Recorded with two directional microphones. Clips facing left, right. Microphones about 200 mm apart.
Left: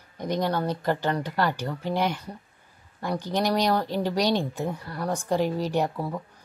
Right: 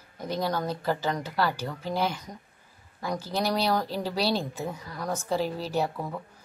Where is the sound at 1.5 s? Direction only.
15° left (ahead or behind).